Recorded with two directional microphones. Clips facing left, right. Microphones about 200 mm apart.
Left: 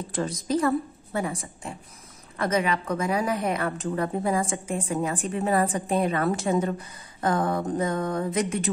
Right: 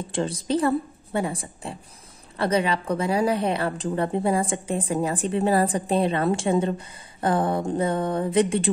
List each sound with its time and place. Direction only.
0.1 s a woman's voice: 30° right (ahead or behind)